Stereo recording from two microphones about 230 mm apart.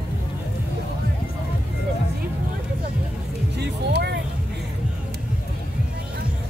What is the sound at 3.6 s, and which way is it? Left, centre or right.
Music, right.